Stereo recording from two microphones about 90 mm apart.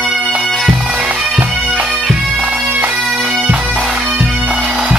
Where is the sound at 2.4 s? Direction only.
15° right (ahead or behind).